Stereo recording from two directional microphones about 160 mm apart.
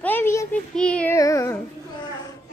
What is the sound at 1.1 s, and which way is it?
Speech, 20° left (ahead or behind).